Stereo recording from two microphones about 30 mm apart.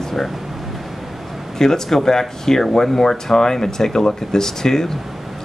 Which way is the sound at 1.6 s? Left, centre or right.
Centre.